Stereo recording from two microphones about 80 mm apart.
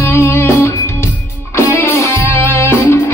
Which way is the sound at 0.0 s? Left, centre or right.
Left.